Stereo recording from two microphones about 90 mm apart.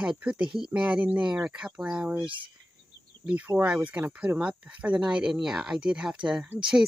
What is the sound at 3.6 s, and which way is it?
Speech, 15° right (ahead or behind).